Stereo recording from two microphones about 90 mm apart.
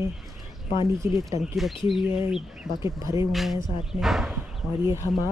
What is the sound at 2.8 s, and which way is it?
Speech, 35° right (ahead or behind).